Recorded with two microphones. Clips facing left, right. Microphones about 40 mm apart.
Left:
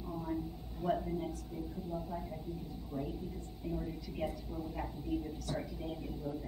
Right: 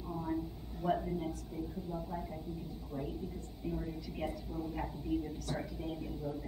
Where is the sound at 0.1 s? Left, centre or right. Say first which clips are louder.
Right 1 dB; centre.